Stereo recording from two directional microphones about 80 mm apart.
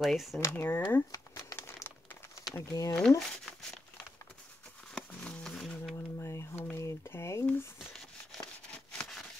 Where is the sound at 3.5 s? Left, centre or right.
Centre.